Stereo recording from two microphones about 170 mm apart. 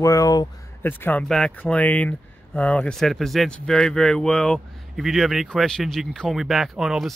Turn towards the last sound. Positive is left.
turn(degrees=0)  # may be behind; listen again after turning